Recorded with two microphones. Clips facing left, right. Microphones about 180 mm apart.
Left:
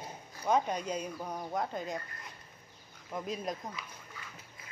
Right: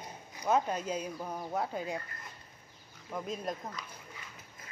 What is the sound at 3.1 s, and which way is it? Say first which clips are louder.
Speech: even; centre (ahead or behind).